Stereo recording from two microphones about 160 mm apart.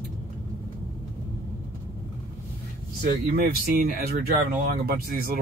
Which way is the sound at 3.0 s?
60° right (ahead or behind).